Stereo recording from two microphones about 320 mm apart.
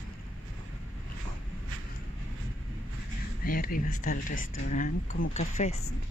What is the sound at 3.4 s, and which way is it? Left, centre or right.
Speech, left.